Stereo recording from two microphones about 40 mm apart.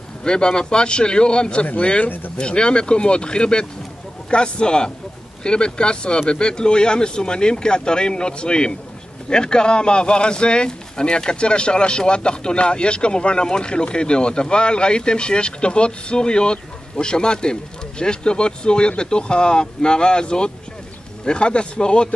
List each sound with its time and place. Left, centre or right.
0.2 s speech: left